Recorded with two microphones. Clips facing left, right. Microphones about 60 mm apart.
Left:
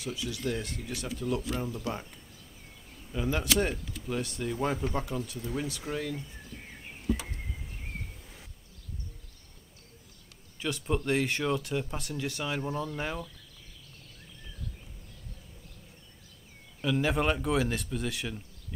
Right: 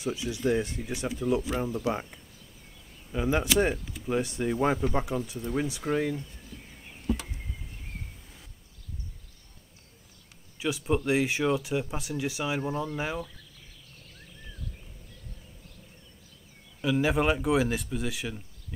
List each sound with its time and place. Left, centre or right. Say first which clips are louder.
0.0 s speech: right 5 dB; right
10.6 s speech: right 3 dB; centre
16.8 s speech: right 3 dB; centre